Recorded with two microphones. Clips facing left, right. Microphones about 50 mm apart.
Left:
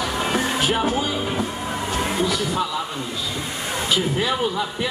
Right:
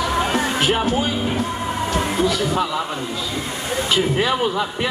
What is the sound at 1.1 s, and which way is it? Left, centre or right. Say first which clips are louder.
Speech: right 2 dB; centre.